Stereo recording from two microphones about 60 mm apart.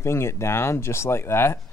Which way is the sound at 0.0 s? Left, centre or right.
Left.